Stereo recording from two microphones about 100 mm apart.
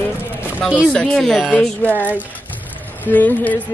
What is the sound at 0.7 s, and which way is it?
A woman's voice, 10° left (ahead or behind).